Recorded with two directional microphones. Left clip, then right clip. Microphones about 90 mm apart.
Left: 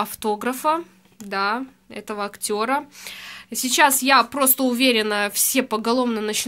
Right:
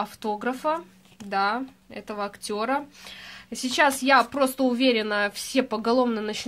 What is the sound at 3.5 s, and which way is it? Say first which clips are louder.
Speech: left 4 dB; 10° left (ahead or behind).